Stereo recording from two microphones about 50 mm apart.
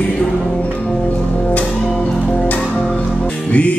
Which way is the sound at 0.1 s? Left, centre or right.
Left.